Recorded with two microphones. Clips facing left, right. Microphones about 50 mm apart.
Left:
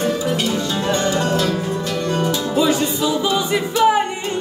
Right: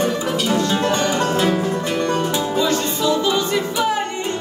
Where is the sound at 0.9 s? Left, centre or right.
Right.